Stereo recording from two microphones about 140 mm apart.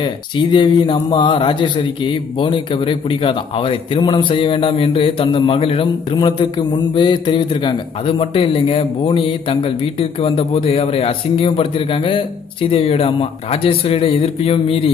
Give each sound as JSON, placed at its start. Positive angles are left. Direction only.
{"t": 0.0, "sound": "a man's voice", "side_deg": 35}